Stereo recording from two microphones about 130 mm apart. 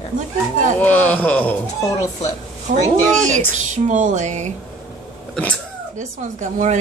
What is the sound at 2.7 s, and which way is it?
Speech, 90° right.